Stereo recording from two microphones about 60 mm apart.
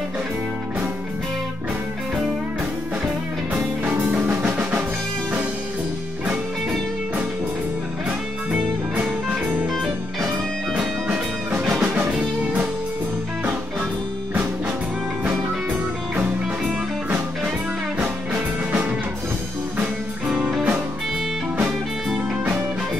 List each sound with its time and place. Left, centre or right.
3.8 s music: right
8.5 s music: centre
11.8 s music: right
18.0 s music: right